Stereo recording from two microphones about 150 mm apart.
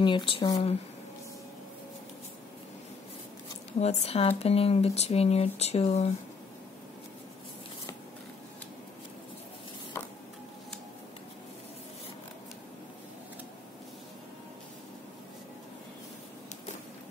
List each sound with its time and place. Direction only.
0.0 s speech: 35° left (ahead or behind)
3.8 s speech: 40° left (ahead or behind)